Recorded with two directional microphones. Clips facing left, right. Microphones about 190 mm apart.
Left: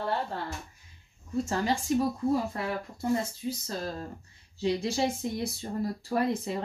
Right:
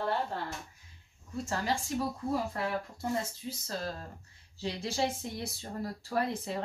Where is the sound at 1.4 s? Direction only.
20° left (ahead or behind).